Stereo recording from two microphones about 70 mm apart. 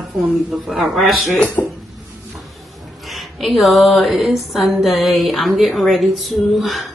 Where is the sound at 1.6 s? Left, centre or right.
Left.